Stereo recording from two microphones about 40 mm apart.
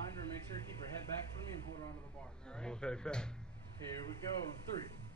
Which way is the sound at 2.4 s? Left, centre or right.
Left.